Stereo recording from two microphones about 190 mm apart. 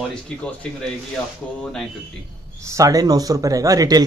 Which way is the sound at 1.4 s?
5° left (ahead or behind).